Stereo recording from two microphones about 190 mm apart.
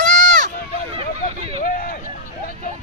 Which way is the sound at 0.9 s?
35° right (ahead or behind).